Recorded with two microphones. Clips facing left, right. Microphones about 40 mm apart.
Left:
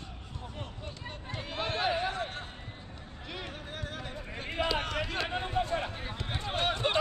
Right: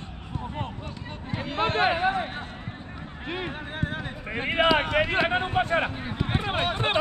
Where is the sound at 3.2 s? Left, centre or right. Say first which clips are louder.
Right 9 dB; right.